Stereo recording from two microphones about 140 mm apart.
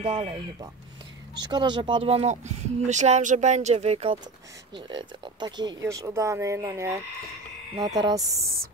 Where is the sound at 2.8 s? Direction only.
60° right (ahead or behind).